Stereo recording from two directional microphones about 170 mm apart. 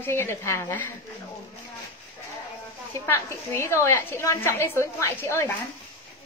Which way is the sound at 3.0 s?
15° left (ahead or behind).